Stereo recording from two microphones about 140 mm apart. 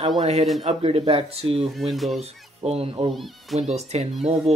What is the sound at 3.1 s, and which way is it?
Speech, centre (ahead or behind).